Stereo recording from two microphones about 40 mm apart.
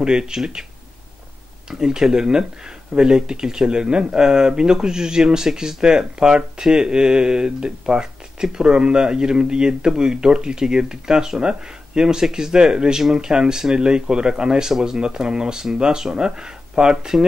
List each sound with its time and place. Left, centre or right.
0.0 s speech: centre
1.7 s speech: centre